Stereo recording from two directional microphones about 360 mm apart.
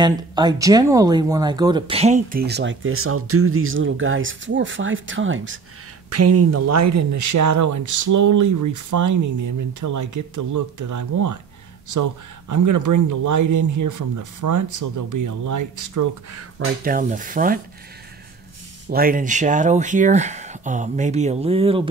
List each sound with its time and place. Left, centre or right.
0.0 s speech: centre; by 16.4 s right
16.5 s speech: right
18.9 s speech: right